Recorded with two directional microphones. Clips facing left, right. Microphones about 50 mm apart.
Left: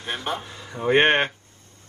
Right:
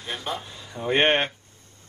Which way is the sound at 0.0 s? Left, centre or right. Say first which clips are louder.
Left 3 dB; left.